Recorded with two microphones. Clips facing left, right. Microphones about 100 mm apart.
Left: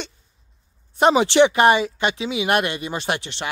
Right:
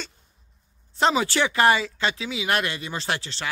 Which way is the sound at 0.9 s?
20° left (ahead or behind).